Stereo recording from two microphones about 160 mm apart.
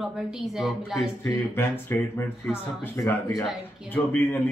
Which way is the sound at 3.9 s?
10° left (ahead or behind).